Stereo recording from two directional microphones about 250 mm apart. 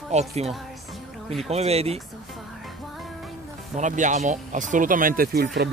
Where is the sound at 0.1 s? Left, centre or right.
Right.